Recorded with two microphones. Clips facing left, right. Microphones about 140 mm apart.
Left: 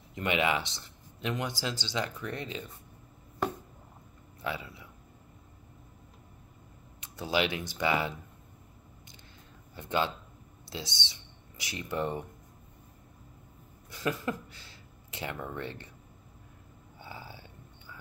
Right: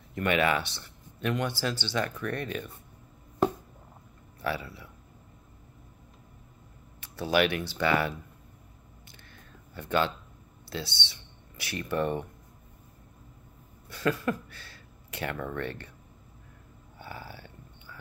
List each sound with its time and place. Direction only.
0.1 s speech: 20° left (ahead or behind)
4.4 s speech: 20° left (ahead or behind)
7.0 s speech: 20° left (ahead or behind)
9.8 s speech: 20° left (ahead or behind)
13.8 s speech: 20° left (ahead or behind)
17.0 s a sound: 15° left (ahead or behind)